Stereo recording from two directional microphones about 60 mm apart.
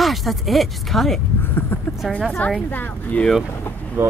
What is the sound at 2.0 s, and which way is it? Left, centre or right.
Speech, centre.